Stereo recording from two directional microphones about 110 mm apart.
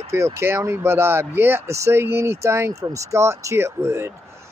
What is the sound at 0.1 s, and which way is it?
A man's voice, 25° right (ahead or behind).